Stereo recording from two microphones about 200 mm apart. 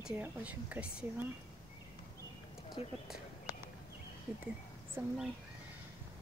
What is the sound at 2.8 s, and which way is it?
Speech, 30° left (ahead or behind).